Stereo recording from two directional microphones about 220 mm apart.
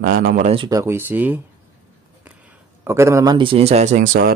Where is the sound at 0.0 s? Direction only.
40° right (ahead or behind).